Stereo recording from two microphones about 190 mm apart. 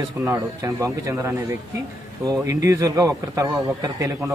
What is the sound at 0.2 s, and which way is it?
Speech, 15° right (ahead or behind).